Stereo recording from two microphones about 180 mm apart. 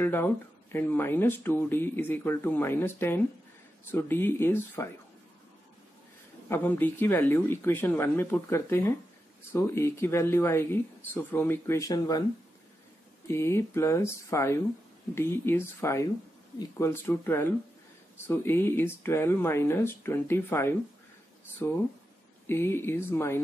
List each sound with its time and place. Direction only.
0.0 s speech: 10° left (ahead or behind)
6.5 s speech: 10° left (ahead or behind)
13.3 s speech: 15° left (ahead or behind)